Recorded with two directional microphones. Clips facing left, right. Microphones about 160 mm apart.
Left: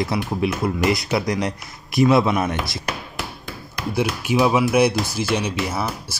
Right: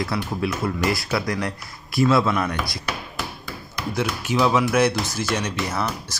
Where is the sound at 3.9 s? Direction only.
10° left (ahead or behind).